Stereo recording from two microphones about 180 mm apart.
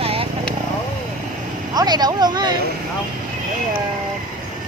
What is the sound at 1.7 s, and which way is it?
Speech, 20° right (ahead or behind).